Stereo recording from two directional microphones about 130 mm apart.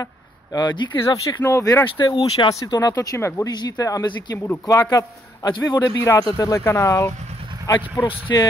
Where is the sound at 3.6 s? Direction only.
30° left (ahead or behind).